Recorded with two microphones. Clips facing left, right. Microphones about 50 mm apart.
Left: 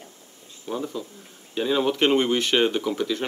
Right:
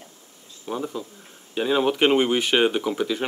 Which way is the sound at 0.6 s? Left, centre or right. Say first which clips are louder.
Right 1 dB; centre.